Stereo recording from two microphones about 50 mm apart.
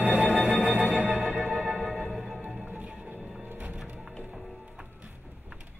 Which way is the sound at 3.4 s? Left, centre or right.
Right.